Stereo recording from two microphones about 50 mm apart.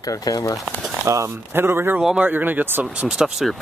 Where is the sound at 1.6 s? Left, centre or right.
Right.